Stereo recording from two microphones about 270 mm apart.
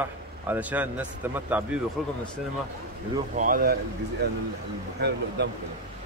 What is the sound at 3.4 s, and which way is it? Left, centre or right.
Speech, right.